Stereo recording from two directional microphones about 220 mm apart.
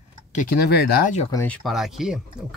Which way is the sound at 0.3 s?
35° left (ahead or behind).